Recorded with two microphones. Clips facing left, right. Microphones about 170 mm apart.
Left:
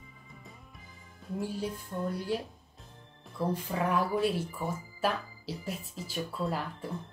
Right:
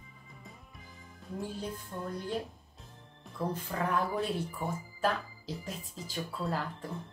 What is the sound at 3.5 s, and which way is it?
Speech, 10° left (ahead or behind).